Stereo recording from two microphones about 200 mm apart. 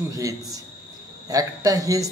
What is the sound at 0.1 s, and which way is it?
Speech, 15° right (ahead or behind).